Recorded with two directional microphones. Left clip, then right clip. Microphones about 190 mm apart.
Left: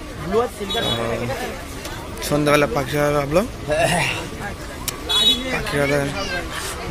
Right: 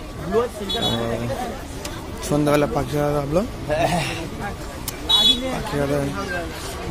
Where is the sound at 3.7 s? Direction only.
45° left (ahead or behind).